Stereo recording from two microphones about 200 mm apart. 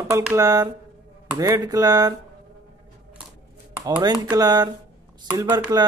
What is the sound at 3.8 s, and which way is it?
Speech, 20° right (ahead or behind).